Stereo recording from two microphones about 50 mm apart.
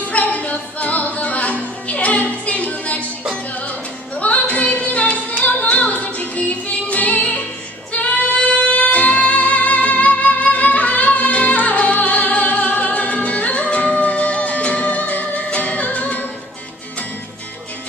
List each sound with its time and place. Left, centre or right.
0.0 s music: left
4.2 s singing: left
7.9 s music: left